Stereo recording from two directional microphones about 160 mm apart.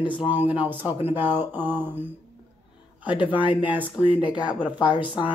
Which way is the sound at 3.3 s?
30° left (ahead or behind).